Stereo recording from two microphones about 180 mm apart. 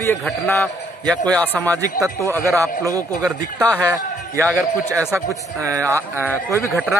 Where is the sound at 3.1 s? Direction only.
5° left (ahead or behind).